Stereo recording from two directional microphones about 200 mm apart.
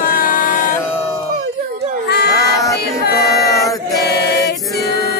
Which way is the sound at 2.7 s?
50° left (ahead or behind).